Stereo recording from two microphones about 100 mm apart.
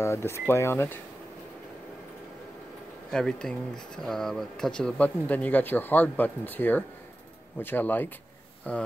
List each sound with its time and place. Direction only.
0.0 s speech: 25° left (ahead or behind)
3.1 s speech: 5° left (ahead or behind)